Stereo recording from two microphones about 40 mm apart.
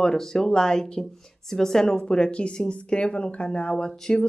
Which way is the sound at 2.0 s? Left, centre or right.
Left.